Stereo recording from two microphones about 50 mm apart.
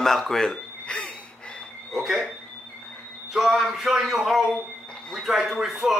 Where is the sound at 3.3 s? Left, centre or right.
Centre.